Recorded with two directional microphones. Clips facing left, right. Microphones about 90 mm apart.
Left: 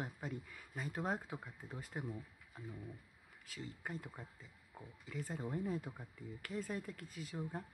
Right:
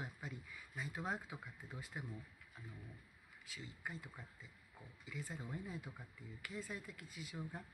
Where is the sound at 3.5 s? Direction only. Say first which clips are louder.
Left 4 dB; 40° left (ahead or behind).